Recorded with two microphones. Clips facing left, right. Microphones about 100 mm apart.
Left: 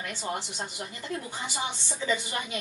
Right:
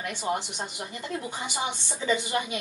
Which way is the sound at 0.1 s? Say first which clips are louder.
Right 6 dB; 15° right (ahead or behind).